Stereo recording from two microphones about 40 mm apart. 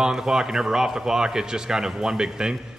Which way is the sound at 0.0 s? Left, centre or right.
Centre.